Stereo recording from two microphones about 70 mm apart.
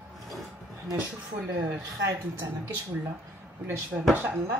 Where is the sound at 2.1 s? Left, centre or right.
Right.